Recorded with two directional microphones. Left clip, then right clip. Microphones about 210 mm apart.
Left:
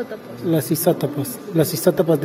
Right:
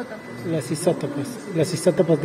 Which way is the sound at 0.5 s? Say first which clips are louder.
Left 3 dB; 35° left (ahead or behind).